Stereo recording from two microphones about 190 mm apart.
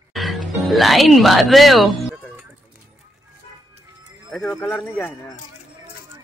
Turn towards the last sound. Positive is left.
turn(degrees=10)  # may be behind; listen again after turning